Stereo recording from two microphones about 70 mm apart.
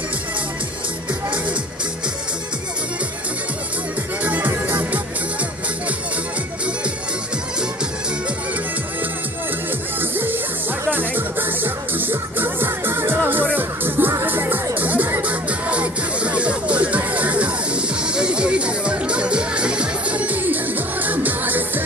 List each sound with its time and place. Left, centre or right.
4.2 s music: right
9.9 s music: right